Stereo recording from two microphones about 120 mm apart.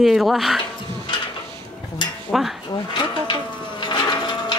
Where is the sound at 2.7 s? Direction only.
40° left (ahead or behind).